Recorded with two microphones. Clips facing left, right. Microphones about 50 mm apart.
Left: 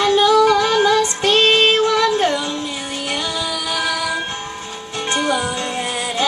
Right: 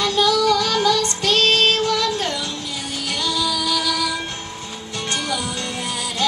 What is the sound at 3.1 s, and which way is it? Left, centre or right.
Music, left.